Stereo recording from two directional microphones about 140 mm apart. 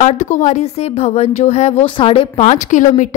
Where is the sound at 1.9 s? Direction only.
40° left (ahead or behind); by 3.1 s 65° left (ahead or behind).